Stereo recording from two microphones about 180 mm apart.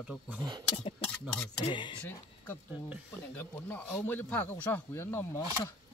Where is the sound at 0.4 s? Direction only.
25° right (ahead or behind).